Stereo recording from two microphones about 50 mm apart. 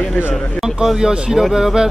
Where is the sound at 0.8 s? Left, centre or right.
Centre.